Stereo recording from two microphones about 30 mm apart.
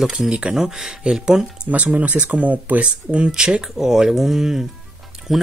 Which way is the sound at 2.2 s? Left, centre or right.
Right.